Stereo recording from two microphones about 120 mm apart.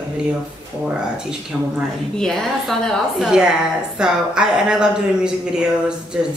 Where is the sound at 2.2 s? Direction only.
5° left (ahead or behind).